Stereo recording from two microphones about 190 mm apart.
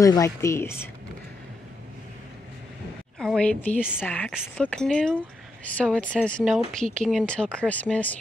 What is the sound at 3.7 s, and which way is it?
Speech, 5° right (ahead or behind).